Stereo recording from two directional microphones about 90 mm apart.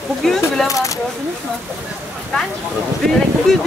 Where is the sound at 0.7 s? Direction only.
40° left (ahead or behind).